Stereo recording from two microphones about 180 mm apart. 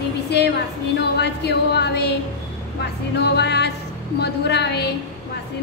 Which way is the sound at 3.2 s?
70° left (ahead or behind).